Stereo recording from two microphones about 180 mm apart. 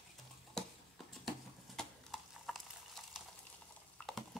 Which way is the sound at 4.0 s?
5° left (ahead or behind).